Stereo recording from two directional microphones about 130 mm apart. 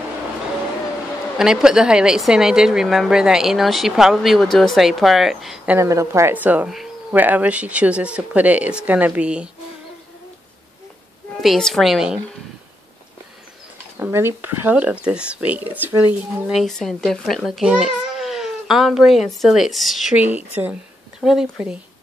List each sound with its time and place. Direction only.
1.4 s a woman's voice: 5° right (ahead or behind)
5.8 s a woman's voice: 25° right (ahead or behind)
6.7 s a sound: centre (ahead or behind)
7.2 s speech: 15° right (ahead or behind)
11.4 s a woman's voice: centre (ahead or behind)
13.9 s speech: 20° right (ahead or behind)
16.4 s a woman's voice: centre (ahead or behind)
21.2 s a woman's voice: centre (ahead or behind)